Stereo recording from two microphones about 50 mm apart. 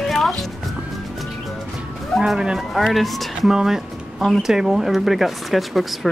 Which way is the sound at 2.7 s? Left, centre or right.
Centre.